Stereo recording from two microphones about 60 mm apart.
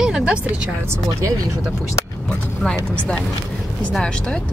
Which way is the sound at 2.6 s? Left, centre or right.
Centre.